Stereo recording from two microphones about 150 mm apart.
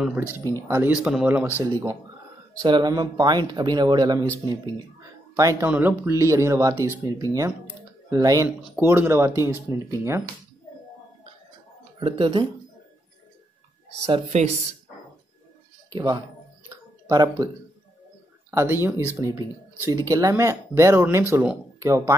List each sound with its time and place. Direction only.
0.4 s speech: 20° left (ahead or behind)
0.7 s speech: 10° right (ahead or behind)
1.6 s speech: 20° right (ahead or behind)
8.6 s speech: 15° right (ahead or behind)
12.0 s speech: 35° right (ahead or behind)
14.0 s speech: 45° right (ahead or behind)
15.9 s speech: 25° right (ahead or behind)
17.4 s speech: 20° right (ahead or behind)
19.9 s speech: 25° right (ahead or behind)